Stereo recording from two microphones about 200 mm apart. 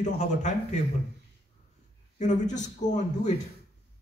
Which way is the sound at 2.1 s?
35° left (ahead or behind).